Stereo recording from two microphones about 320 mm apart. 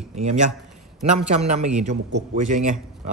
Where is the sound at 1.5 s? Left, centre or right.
Right.